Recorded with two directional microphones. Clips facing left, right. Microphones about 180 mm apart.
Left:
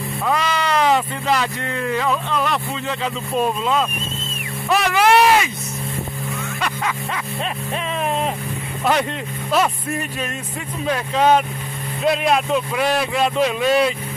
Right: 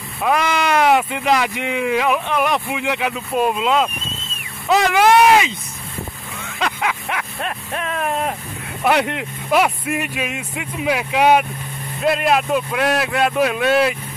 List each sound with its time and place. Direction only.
0.2 s speech: 15° right (ahead or behind)
6.8 s music: 15° right (ahead or behind)
7.7 s a man's voice: 5° right (ahead or behind)